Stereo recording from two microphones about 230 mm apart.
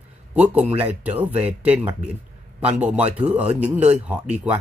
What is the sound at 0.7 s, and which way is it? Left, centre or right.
Speech, centre.